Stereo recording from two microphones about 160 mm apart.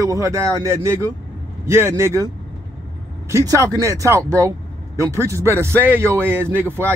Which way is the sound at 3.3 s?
20° right (ahead or behind).